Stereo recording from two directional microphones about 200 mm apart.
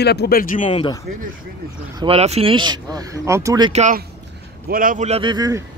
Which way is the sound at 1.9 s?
30° right (ahead or behind).